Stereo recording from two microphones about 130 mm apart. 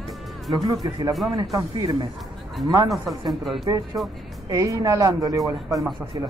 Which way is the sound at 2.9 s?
Centre (ahead or behind).